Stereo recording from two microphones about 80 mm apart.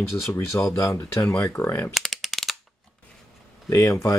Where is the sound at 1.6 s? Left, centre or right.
Left.